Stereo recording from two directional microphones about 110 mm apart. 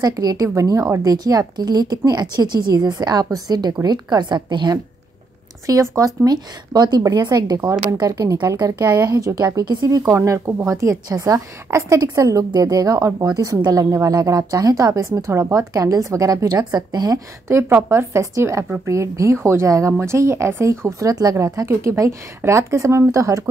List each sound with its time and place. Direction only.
0.0 s a woman's voice: 35° right (ahead or behind)
5.7 s a woman's voice: 30° right (ahead or behind)
10.0 s a woman's voice: 25° right (ahead or behind)
17.5 s a woman's voice: 25° right (ahead or behind)